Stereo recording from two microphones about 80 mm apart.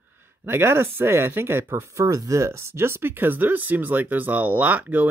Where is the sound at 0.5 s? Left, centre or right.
Right.